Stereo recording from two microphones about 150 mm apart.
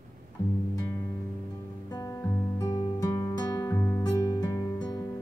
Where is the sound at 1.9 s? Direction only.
25° left (ahead or behind).